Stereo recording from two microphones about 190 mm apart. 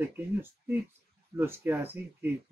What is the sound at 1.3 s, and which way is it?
Speech, 10° right (ahead or behind).